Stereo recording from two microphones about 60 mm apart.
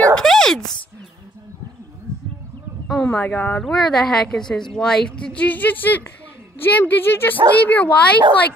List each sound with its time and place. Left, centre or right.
0.1 s a sound: centre
3.0 s speech: left
6.8 s a woman's voice: left
7.5 s speech: left